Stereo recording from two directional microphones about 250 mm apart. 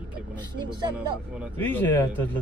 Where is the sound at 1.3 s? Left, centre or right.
Centre.